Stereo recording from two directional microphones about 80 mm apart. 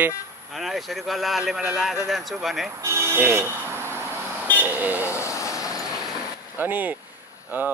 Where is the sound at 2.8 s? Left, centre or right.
Right.